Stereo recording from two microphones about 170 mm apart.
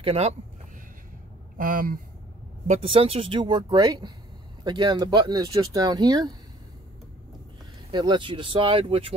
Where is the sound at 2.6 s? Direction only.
35° right (ahead or behind).